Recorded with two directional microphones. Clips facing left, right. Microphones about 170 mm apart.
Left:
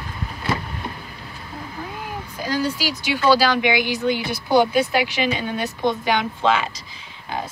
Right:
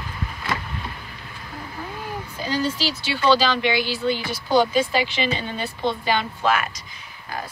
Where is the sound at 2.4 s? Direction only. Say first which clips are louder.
Left 1 dB; 10° left (ahead or behind).